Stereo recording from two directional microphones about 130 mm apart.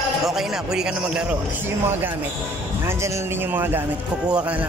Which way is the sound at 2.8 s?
15° right (ahead or behind).